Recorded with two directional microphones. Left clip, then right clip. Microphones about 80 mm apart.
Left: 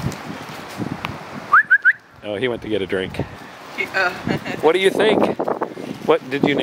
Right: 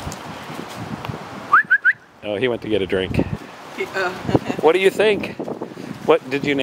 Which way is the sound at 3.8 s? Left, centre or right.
Left.